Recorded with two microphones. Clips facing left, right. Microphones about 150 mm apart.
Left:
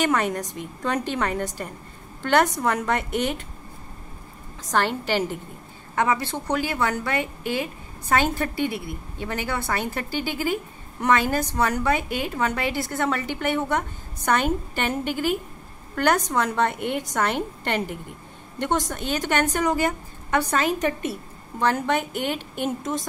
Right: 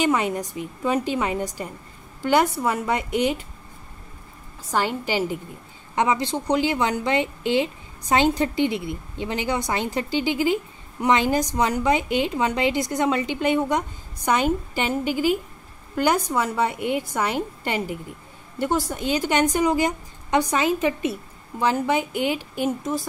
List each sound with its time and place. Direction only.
0.0 s a woman's voice: 10° right (ahead or behind)
4.6 s a woman's voice: 10° right (ahead or behind)
22.7 s a woman's voice: centre (ahead or behind)